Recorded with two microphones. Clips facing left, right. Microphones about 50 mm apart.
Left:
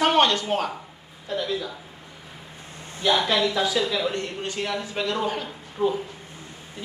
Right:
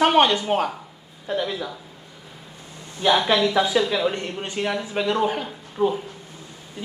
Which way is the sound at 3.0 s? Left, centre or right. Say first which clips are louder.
Right 3 dB; right.